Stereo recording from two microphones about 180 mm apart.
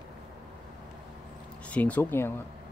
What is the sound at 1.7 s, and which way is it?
Speech, 10° left (ahead or behind).